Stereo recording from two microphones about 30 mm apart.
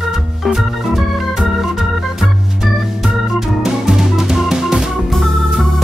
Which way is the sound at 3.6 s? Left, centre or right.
Centre.